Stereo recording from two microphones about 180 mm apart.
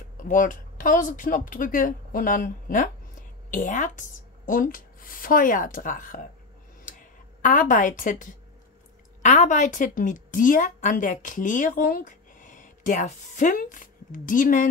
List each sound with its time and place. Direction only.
0.2 s speech: 45° left (ahead or behind)
7.4 s a woman's voice: 45° left (ahead or behind)